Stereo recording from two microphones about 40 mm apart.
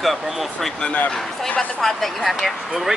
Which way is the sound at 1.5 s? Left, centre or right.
Left.